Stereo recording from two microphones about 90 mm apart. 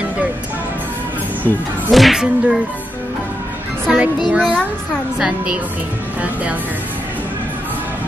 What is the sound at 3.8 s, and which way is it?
Music, 15° right (ahead or behind).